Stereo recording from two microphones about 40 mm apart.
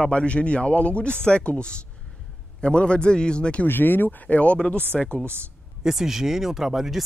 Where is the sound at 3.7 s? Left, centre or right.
Left.